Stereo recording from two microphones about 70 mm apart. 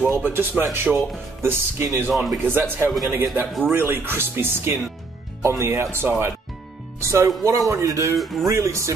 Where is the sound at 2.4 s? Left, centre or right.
Right.